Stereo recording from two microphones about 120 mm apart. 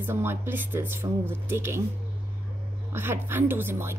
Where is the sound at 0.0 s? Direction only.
20° right (ahead or behind).